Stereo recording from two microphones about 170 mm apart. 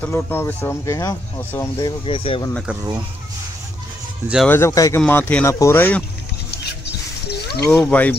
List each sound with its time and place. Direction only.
0.0 s speech: 15° left (ahead or behind); by 2.4 s 30° left (ahead or behind)
4.5 s speech: 15° left (ahead or behind)
6.5 s rodents: 75° left (ahead or behind)
7.6 s speech: 5° left (ahead or behind)